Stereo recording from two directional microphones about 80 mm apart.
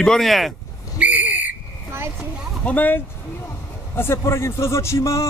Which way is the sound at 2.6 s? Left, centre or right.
Left.